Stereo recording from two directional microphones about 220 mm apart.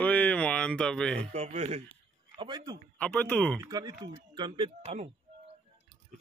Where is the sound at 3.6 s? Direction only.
20° right (ahead or behind).